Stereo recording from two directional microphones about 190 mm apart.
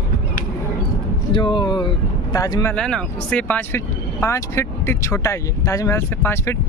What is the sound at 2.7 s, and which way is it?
Speech, 5° left (ahead or behind).